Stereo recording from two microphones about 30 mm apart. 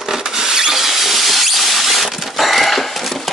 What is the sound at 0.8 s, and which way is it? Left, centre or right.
Mouse, centre.